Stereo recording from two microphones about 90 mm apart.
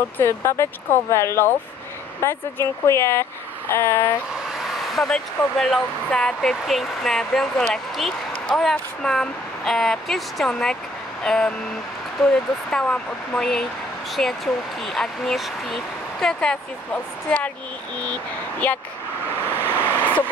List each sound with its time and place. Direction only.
0.2 s speech: 30° left (ahead or behind)
4.9 s speech: 5° left (ahead or behind)
19.7 s vehicle: 20° left (ahead or behind)